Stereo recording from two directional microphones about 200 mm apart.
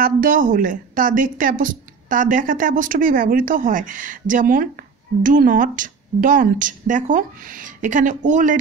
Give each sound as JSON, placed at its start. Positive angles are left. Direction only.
{"t": 0.0, "sound": "a woman's voice", "side_deg": -45}